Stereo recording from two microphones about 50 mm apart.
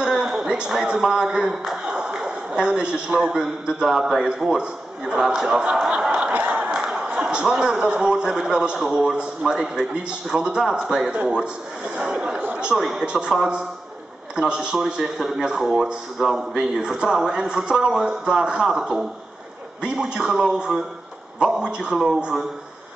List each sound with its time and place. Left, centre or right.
0.0 s a sound: centre
0.8 s a man's voice: centre
1.9 s a sound: centre
3.3 s a man's voice: centre
6.3 s chuckle: right
7.6 s a man's voice: centre
12.7 s speech: centre
13.0 s a man's voice: centre
14.3 s a man's voice: centre
15.0 s a man's voice: centre